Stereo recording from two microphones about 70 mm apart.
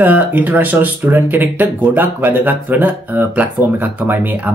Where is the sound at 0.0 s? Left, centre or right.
Right.